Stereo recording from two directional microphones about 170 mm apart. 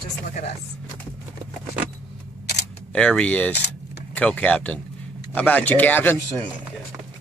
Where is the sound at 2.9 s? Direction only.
5° left (ahead or behind).